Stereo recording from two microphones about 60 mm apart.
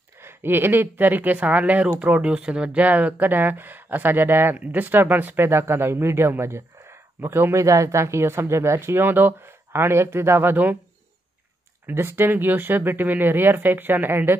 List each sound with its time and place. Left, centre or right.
0.2 s speech: right
7.6 s speech: right
11.8 s speech: right